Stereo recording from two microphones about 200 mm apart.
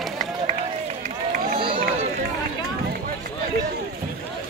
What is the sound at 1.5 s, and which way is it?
Run, 25° right (ahead or behind).